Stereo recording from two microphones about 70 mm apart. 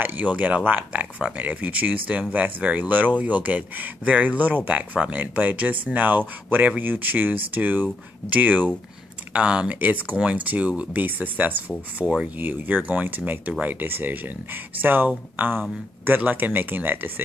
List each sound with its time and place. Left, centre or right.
0.0 s speech: right